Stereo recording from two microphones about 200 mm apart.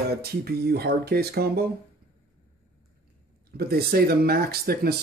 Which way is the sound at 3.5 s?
50° right (ahead or behind).